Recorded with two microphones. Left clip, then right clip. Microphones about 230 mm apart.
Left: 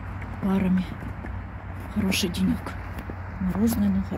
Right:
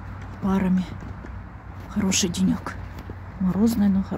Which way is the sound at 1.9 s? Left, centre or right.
Centre.